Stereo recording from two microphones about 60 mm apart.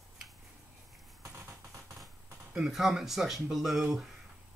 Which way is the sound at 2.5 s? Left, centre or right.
Centre.